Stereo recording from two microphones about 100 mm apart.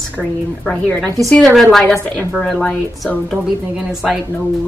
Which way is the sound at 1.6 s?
Centre (ahead or behind).